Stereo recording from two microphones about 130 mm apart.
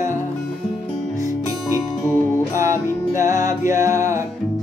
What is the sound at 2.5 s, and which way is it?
Music, 20° right (ahead or behind).